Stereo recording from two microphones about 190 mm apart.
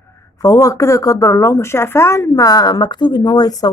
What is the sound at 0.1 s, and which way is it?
Speech, 15° left (ahead or behind).